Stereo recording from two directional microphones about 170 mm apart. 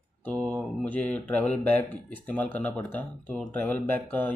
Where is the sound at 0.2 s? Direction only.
5° left (ahead or behind).